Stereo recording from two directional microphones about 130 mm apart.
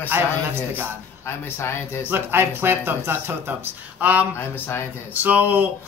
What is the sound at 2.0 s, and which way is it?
Speech, 15° right (ahead or behind).